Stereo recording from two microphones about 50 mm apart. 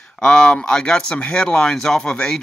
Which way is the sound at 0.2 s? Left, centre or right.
Centre.